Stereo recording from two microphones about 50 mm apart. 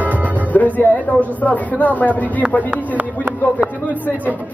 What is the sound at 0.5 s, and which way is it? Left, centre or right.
Speech, left.